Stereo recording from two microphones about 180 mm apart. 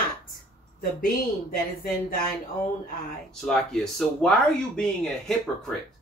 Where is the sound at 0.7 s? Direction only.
55° left (ahead or behind).